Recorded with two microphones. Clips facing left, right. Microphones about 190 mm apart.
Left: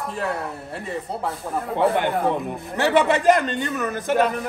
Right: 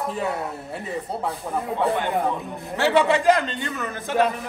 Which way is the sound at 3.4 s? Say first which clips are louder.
Left 4 dB; 45° left (ahead or behind).